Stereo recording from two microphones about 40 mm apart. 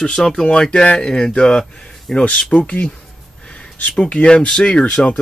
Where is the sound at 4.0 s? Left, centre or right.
Left.